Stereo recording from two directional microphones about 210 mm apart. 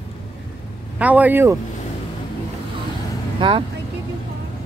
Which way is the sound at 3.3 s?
25° right (ahead or behind).